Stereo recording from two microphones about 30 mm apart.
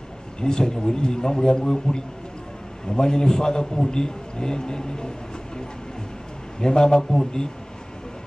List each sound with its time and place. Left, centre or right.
0.4 s a man's voice: left
6.6 s a man's voice: left